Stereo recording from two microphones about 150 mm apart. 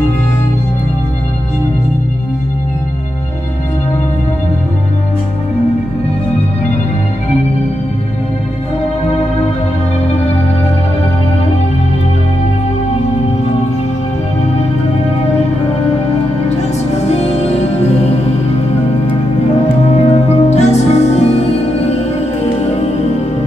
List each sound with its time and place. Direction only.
17.0 s music: 45° left (ahead or behind)
19.8 s music: 45° left (ahead or behind)